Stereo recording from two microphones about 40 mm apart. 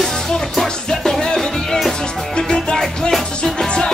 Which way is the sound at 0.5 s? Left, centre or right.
Centre.